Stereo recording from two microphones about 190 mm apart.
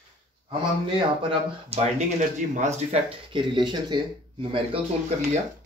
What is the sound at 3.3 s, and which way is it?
Speech, 25° right (ahead or behind).